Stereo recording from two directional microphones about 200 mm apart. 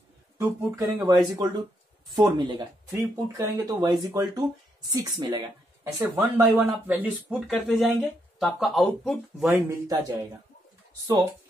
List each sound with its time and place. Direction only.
0.4 s speech: 15° right (ahead or behind)
6.5 s speech: 5° right (ahead or behind)
9.5 s speech: 15° right (ahead or behind)